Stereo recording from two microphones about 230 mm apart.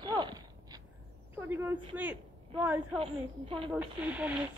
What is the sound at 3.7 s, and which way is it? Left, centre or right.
Speech, centre.